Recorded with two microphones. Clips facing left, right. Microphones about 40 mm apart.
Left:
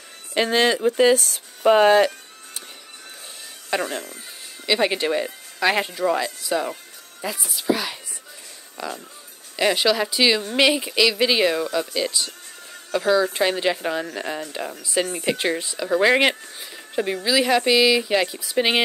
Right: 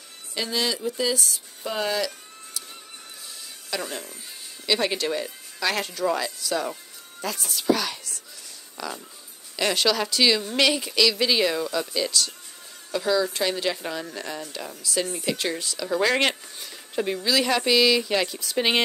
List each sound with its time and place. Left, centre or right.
0.3 s speech: left
3.7 s speech: left
4.6 s speech: left